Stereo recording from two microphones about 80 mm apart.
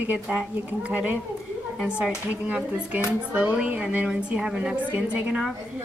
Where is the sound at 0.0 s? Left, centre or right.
Right.